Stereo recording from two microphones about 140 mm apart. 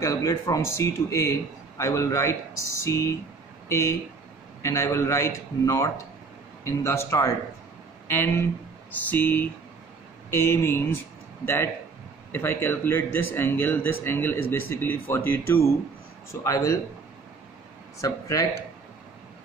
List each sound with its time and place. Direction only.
0.0 s speech: 20° left (ahead or behind)
18.0 s speech: 20° left (ahead or behind)